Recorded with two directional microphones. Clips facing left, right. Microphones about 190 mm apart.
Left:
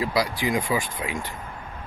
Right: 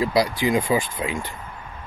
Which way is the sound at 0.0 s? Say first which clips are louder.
Right 4 dB; 25° right (ahead or behind).